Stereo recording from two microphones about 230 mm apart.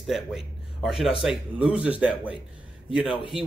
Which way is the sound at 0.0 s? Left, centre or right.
Centre.